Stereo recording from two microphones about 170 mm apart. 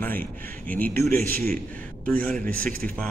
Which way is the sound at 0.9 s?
60° right (ahead or behind).